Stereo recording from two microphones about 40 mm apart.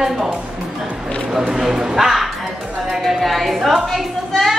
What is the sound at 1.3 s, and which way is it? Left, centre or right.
A woman's voice, centre.